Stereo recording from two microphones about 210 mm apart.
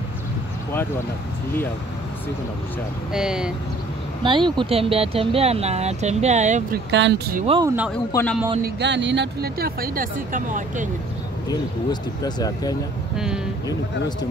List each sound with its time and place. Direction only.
3.1 s speech: 5° right (ahead or behind)
4.2 s speech: 20° right (ahead or behind)
6.9 s speech: 55° right (ahead or behind)
7.4 s speech: 25° right (ahead or behind)
8.1 s speech: 10° left (ahead or behind)
8.6 s speech: 55° right (ahead or behind); by 10.9 s 40° right (ahead or behind)
11.4 s speech: 20° left (ahead or behind)